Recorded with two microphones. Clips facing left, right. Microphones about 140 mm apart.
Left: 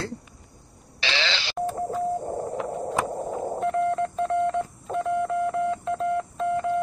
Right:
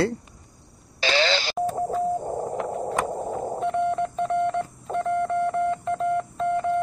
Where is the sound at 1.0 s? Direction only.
45° right (ahead or behind).